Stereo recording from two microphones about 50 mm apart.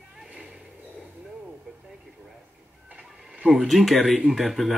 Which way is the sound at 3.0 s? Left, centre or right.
Right.